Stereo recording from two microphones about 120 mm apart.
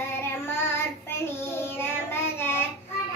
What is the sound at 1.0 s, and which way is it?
Child singing, 20° left (ahead or behind).